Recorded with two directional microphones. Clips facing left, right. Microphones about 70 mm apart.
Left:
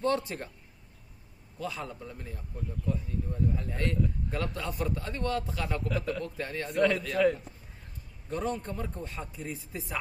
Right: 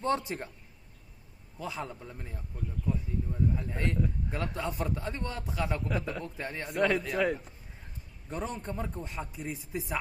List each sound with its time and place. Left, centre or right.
0.3 s a man's voice: centre
1.6 s a man's voice: right
3.5 s a man's voice: centre
6.7 s a man's voice: centre; by 9.9 s right